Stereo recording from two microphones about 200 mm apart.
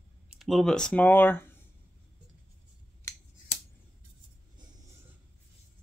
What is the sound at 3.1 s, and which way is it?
Scissors, 15° left (ahead or behind).